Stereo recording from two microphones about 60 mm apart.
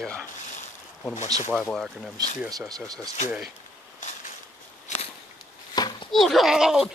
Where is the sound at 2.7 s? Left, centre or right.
Right.